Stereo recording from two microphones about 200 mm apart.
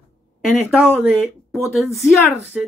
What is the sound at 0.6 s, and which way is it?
Speech, centre (ahead or behind).